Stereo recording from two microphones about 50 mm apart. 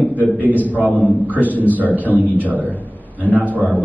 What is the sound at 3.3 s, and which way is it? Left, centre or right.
Speech, left.